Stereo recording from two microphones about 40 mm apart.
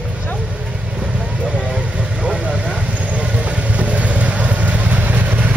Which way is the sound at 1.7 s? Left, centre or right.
Right.